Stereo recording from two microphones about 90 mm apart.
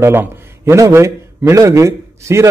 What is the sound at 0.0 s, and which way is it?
A man's voice, 25° right (ahead or behind).